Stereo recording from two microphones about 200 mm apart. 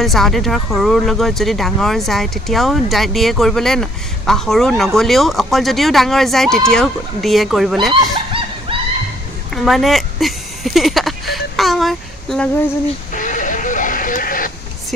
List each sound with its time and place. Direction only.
0.0 s speech: centre (ahead or behind)
8.0 s dog: 25° right (ahead or behind)
9.5 s a sound: centre (ahead or behind)
13.1 s vehicle: 40° left (ahead or behind)